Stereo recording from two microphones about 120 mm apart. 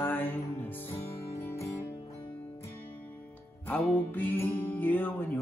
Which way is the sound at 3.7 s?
15° left (ahead or behind).